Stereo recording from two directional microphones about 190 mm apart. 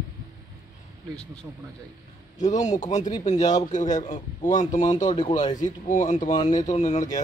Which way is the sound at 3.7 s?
40° left (ahead or behind).